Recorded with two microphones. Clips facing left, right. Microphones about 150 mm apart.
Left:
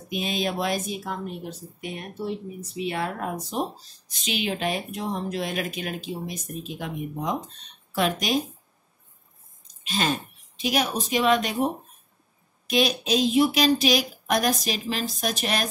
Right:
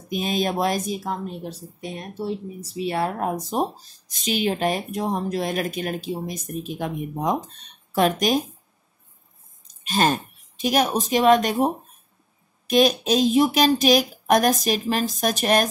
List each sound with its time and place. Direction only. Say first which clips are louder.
0.1 s a woman's voice: right 4 dB; 45° right (ahead or behind)
9.8 s a woman's voice: right 5 dB; 45° right (ahead or behind)